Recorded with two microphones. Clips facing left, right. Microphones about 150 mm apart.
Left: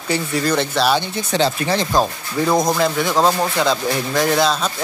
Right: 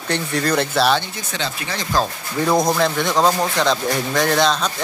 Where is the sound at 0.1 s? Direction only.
Centre (ahead or behind).